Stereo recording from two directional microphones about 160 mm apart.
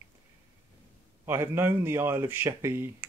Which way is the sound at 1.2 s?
15° right (ahead or behind).